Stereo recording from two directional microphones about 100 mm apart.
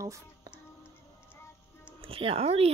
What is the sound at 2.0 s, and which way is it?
Speech, 65° right (ahead or behind).